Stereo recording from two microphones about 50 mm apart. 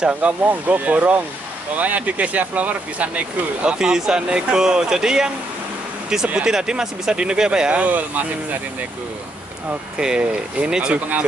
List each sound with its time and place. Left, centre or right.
0.4 s speech: right; by 7.8 s centre
7.8 s speech: right
9.9 s speech: centre